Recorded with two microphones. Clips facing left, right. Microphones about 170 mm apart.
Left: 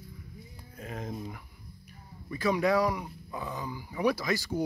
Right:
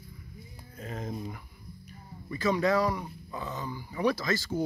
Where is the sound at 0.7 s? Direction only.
5° left (ahead or behind).